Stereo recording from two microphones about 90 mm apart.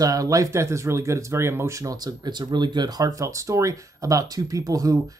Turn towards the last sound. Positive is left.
turn(degrees=-40)  # may be behind; listen again after turning